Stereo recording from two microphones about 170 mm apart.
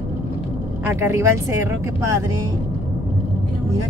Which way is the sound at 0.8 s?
15° right (ahead or behind).